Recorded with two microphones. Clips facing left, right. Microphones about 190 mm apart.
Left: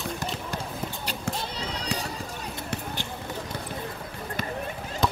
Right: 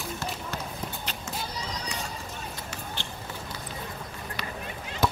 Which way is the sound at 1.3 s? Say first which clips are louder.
Left 6 dB; 65° left (ahead or behind).